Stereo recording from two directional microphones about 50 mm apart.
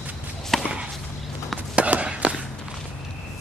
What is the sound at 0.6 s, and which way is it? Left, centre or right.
Chop, right.